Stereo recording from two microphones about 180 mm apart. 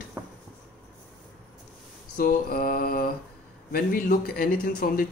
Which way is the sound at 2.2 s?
55° left (ahead or behind).